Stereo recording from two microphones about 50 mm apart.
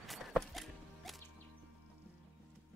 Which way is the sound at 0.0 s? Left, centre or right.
Centre.